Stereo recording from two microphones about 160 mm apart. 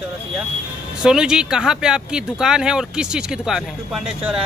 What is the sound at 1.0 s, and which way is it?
Speech, 5° right (ahead or behind).